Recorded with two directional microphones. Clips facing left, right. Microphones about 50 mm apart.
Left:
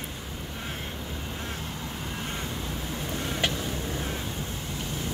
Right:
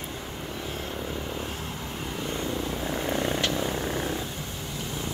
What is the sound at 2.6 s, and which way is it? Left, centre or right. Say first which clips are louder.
Vehicle: right 5 dB; right.